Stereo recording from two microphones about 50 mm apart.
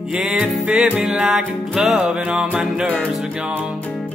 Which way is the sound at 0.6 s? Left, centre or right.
Right.